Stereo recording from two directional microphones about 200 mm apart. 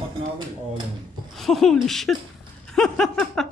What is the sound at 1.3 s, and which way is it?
Speech, centre (ahead or behind).